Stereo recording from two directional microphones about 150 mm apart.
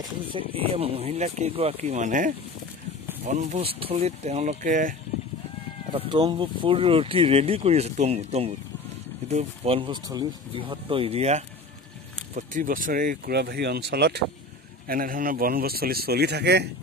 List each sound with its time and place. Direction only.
0.3 s speech: 40° right (ahead or behind)
3.6 s speech: 40° right (ahead or behind); by 4.9 s 60° right (ahead or behind)
5.9 s speech: 35° right (ahead or behind)
9.8 s speech: 30° right (ahead or behind); by 11.4 s 45° right (ahead or behind)
12.4 s speech: 65° right (ahead or behind); by 14.2 s 90° right
14.9 s speech: 70° right (ahead or behind); by 16.6 s 90° right